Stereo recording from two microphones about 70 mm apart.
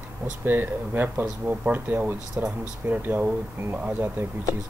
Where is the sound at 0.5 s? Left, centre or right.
Right.